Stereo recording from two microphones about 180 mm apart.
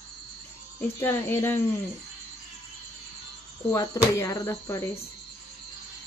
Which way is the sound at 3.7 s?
20° left (ahead or behind).